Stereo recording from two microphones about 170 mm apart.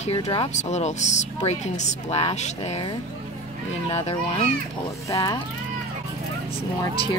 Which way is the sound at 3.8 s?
35° left (ahead or behind).